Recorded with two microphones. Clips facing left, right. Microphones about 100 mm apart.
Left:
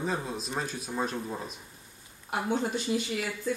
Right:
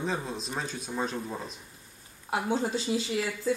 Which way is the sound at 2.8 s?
30° right (ahead or behind).